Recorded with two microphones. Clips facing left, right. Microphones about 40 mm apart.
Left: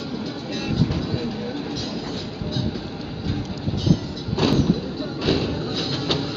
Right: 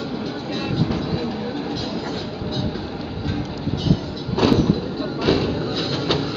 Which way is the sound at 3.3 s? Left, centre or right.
Centre.